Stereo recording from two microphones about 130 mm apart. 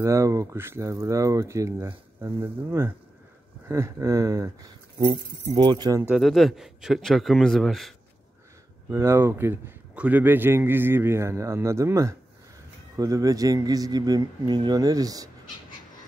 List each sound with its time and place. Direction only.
0.0 s speech: 25° right (ahead or behind)
6.1 s a man's voice: centre (ahead or behind)
8.9 s speech: 20° right (ahead or behind)